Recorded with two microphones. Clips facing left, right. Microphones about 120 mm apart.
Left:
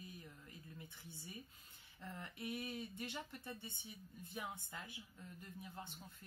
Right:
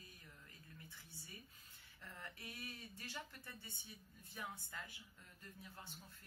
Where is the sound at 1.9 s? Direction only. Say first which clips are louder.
Left 5 dB; 20° left (ahead or behind).